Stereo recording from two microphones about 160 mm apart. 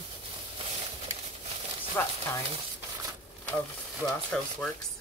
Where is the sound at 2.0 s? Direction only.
15° left (ahead or behind).